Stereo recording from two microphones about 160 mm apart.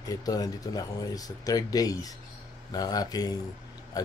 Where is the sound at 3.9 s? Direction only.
25° left (ahead or behind).